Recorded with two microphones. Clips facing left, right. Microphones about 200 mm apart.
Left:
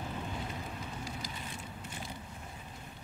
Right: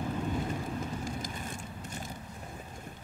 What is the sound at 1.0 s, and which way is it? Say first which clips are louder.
Vehicle: right 5 dB; 45° right (ahead or behind).